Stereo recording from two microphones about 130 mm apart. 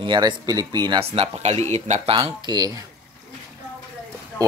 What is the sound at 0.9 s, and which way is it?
Speech, 50° right (ahead or behind).